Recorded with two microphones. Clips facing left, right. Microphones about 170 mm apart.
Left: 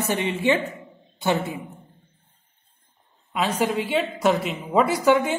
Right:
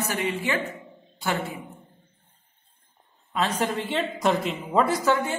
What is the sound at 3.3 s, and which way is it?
A woman's voice, 10° left (ahead or behind).